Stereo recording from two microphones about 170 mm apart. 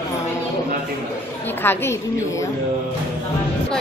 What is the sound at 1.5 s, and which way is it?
Speech, 10° left (ahead or behind).